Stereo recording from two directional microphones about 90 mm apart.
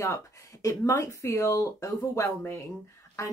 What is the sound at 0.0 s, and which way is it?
Speech, 35° left (ahead or behind).